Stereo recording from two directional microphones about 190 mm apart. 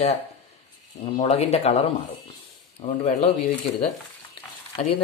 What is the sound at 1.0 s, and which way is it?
Speech, 35° left (ahead or behind).